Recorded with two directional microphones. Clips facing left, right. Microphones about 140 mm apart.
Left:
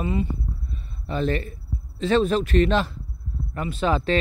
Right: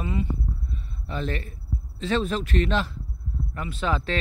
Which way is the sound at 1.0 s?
45° left (ahead or behind).